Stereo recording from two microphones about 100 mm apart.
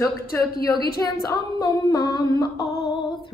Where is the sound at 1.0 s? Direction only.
40° left (ahead or behind).